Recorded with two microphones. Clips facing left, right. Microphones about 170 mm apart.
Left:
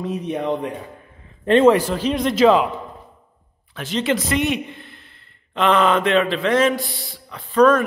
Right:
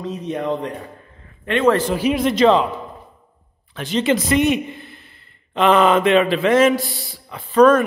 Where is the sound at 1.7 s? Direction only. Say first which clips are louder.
Left 1 dB; 10° left (ahead or behind).